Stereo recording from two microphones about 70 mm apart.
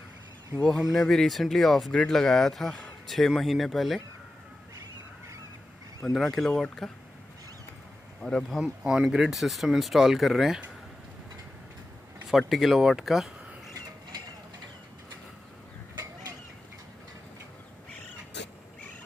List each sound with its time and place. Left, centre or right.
0.9 s speech: centre
6.1 s speech: centre
8.2 s speech: centre
8.5 s speech: centre
12.3 s speech: centre